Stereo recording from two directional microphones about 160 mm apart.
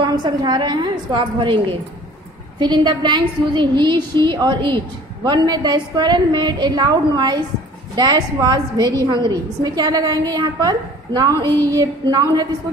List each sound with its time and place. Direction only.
0.0 s a woman's voice: 30° right (ahead or behind)